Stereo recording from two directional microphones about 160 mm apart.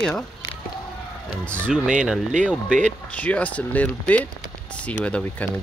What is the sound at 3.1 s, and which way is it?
Speech, 10° left (ahead or behind).